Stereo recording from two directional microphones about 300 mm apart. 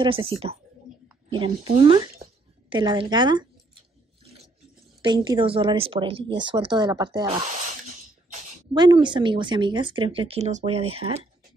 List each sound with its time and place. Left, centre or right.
0.0 s speech: centre
1.3 s speech: centre
4.2 s a sound: centre
5.0 s speech: centre